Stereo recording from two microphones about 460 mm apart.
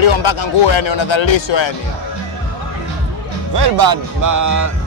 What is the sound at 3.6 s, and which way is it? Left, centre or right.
Speech, right.